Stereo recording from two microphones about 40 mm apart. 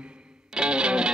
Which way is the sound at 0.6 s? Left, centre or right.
Right.